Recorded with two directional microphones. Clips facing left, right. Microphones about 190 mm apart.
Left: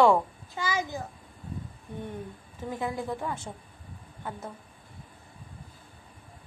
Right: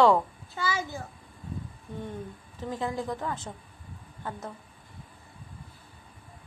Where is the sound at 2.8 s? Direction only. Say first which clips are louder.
Even; 10° left (ahead or behind).